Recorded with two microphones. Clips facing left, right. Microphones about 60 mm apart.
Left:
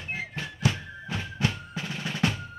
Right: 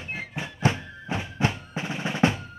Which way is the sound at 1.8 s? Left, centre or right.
Right.